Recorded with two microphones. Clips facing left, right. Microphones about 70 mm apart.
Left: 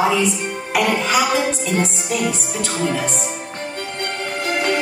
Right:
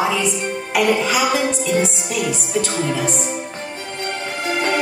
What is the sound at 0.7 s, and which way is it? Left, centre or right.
Speech, centre.